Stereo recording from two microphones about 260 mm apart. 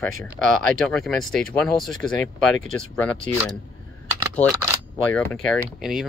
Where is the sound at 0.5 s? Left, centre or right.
Centre.